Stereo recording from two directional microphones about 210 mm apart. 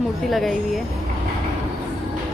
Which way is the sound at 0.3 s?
Centre (ahead or behind).